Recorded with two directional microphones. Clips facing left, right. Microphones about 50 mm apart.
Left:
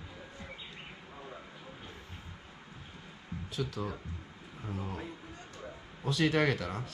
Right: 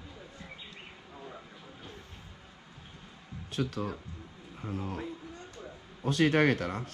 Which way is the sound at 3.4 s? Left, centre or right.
Right.